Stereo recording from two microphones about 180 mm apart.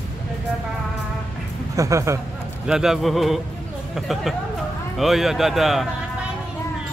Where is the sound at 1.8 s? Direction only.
15° right (ahead or behind).